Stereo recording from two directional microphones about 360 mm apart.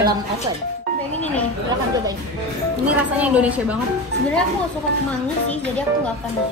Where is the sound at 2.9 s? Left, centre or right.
Centre.